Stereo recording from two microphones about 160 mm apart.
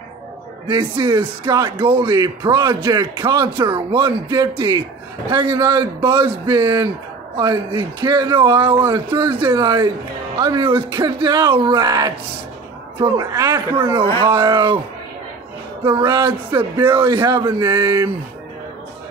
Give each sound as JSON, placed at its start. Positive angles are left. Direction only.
{"t": 0.7, "sound": "speech", "side_deg": -30}
{"t": 13.9, "sound": "speech", "side_deg": -35}
{"t": 16.0, "sound": "speech", "side_deg": -25}